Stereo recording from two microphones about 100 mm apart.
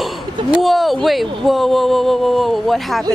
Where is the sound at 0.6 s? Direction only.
Centre (ahead or behind).